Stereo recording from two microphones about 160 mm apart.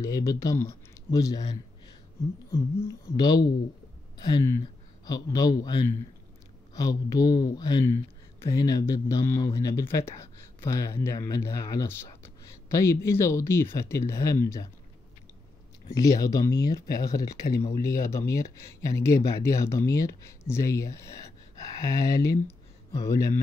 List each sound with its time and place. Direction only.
0.0 s speech: 20° left (ahead or behind)
2.5 s speech: 20° left (ahead or behind)
15.9 s speech: 20° left (ahead or behind)